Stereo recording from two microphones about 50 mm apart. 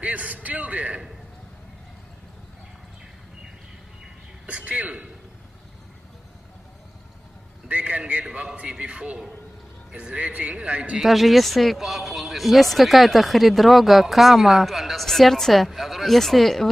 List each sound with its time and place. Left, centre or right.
0.0 s a man's voice: right
4.5 s speech: right
7.6 s a sound: right
8.4 s speech: right
11.0 s speech: centre